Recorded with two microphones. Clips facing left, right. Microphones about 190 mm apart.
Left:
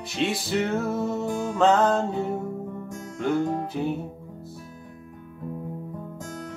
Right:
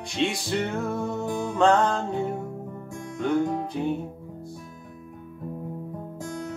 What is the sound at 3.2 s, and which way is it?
Music, 5° left (ahead or behind).